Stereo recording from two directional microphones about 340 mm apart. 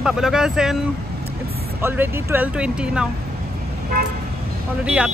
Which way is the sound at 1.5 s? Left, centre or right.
Right.